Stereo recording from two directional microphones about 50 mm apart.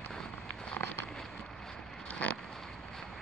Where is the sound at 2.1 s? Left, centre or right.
Left.